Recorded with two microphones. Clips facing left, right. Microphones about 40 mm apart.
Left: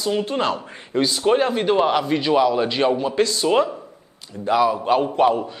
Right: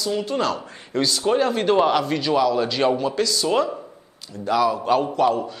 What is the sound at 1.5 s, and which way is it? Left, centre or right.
A man's voice, centre.